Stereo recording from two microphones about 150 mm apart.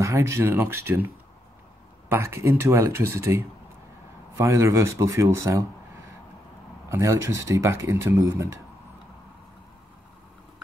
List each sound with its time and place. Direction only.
0.0 s speech: 20° right (ahead or behind)
2.0 s speech: 15° right (ahead or behind)
6.9 s speech: 20° right (ahead or behind)